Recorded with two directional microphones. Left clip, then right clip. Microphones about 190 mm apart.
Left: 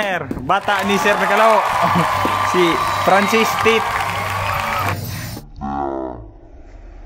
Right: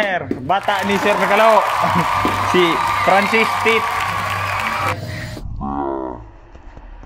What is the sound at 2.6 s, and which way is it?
Speech, 25° left (ahead or behind).